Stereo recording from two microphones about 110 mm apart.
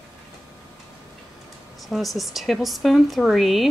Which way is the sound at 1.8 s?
Centre (ahead or behind).